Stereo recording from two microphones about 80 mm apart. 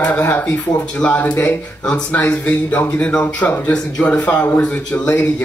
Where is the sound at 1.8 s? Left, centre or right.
Centre.